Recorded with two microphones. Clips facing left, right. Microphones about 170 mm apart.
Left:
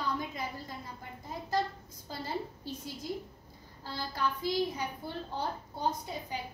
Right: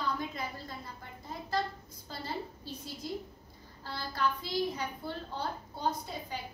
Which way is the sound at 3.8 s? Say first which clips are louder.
Right 1 dB; 15° left (ahead or behind).